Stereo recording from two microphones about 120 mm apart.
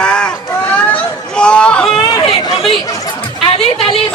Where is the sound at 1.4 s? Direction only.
10° left (ahead or behind).